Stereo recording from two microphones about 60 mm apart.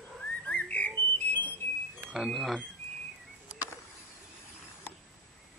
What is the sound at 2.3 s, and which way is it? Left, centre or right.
Speech, centre.